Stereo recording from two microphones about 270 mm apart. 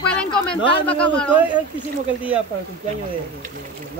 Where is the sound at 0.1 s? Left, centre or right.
Centre.